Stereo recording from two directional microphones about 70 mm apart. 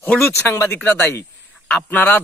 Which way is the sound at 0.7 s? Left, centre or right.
Left.